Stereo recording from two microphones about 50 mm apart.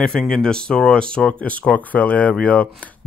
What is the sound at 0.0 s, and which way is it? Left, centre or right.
Speech, centre.